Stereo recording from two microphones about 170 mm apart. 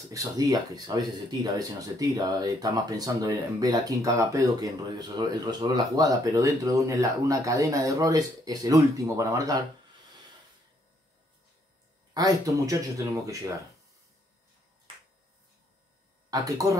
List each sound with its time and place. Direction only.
0.1 s speech: 20° right (ahead or behind)
12.1 s speech: 20° right (ahead or behind)
16.3 s speech: 20° right (ahead or behind)